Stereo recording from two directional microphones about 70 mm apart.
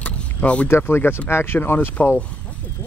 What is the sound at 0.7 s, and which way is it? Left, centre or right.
Speech, left.